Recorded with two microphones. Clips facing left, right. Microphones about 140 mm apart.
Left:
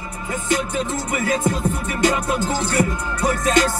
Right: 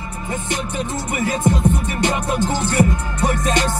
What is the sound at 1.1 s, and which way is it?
Music, 25° right (ahead or behind).